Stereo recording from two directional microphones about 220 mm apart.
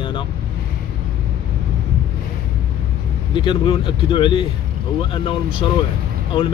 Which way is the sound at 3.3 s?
20° left (ahead or behind).